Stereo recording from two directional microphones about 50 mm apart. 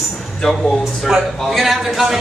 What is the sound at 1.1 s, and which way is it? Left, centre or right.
Speech, centre.